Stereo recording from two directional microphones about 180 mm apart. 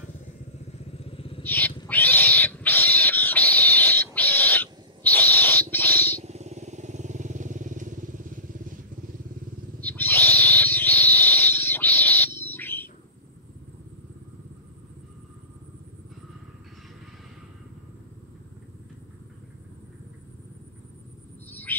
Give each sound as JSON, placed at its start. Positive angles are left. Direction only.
{"t": 0.9, "sound": "vehicle", "side_deg": 30}
{"t": 1.4, "sound": "wild animals", "side_deg": 10}
{"t": 6.2, "sound": "vehicle", "side_deg": -40}
{"t": 9.8, "sound": "owl", "side_deg": 10}
{"t": 21.5, "sound": "a sound", "side_deg": 10}